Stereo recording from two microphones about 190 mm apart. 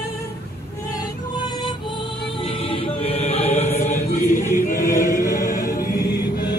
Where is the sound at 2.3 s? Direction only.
30° left (ahead or behind).